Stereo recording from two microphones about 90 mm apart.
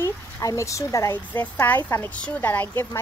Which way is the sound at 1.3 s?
20° left (ahead or behind).